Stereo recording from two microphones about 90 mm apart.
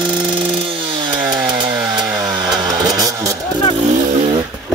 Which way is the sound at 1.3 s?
55° right (ahead or behind).